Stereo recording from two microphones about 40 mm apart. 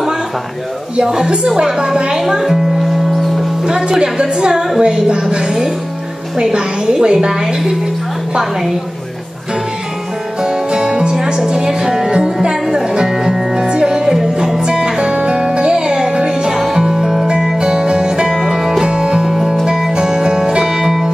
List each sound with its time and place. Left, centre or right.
0.9 s a woman's voice: centre
3.1 s music: centre
3.6 s a woman's voice: centre
10.4 s music: centre
17.6 s music: right
19.9 s music: centre